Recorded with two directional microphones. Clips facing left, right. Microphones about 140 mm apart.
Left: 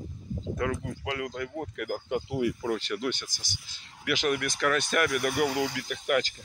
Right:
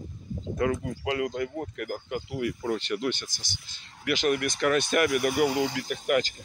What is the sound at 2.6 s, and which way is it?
Speech, centre (ahead or behind).